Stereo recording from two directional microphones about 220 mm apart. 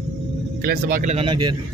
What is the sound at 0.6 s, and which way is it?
Speech, 40° right (ahead or behind).